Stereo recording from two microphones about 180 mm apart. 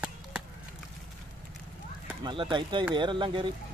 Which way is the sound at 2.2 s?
25° right (ahead or behind).